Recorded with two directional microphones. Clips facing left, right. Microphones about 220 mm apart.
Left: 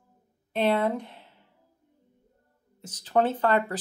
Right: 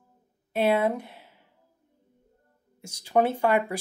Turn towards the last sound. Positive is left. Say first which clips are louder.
# right 1 dB
turn(degrees=-10)  # may be behind; listen again after turning